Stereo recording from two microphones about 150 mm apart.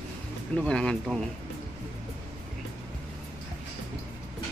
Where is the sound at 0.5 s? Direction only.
5° left (ahead or behind).